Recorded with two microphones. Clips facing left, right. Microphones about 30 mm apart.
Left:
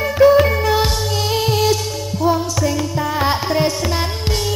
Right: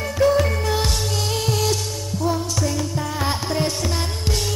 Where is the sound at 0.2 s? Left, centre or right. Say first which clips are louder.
Left 7 dB; left.